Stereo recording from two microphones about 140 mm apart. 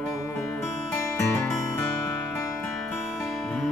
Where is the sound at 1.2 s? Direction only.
20° left (ahead or behind).